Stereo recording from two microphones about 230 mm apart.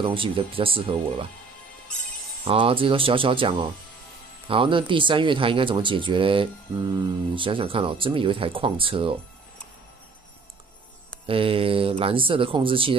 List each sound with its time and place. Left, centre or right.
0.0 s speech: right
2.4 s speech: right
11.2 s speech: right